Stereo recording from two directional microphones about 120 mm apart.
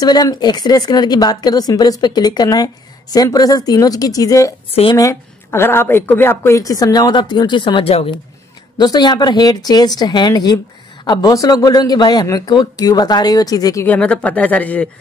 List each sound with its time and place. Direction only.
0.0 s a woman's voice: 35° left (ahead or behind)
13.8 s speech: 10° left (ahead or behind)